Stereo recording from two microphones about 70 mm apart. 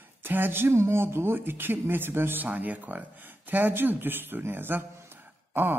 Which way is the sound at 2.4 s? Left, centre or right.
Right.